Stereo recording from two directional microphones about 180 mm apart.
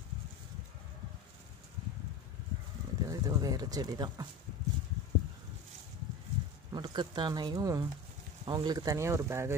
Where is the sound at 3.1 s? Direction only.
20° right (ahead or behind).